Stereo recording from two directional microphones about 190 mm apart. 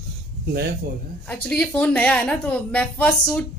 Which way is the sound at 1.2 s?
10° left (ahead or behind).